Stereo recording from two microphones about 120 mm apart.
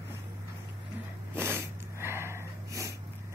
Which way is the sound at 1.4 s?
20° right (ahead or behind).